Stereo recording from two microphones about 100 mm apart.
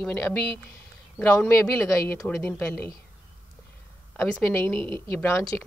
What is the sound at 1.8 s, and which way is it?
Speech, 30° left (ahead or behind).